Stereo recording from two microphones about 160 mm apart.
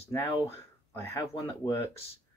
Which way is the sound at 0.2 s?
15° left (ahead or behind).